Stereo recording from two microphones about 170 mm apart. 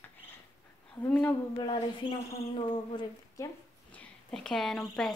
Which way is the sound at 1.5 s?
30° left (ahead or behind).